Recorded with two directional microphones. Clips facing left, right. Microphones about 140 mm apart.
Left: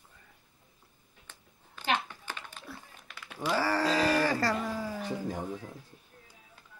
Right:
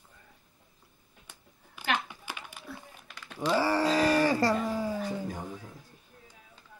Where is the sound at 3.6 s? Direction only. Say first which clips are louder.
Right 2 dB; 15° right (ahead or behind).